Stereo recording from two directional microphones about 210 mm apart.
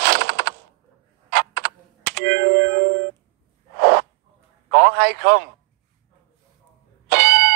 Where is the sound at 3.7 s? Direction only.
50° right (ahead or behind).